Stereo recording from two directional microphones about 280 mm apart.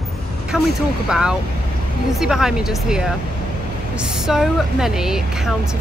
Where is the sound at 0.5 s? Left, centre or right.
Centre.